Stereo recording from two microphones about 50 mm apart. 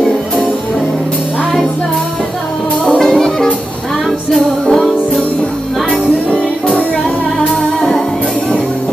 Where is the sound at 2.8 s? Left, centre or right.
Centre.